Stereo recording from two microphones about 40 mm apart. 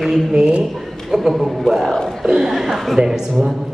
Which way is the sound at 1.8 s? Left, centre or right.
Centre.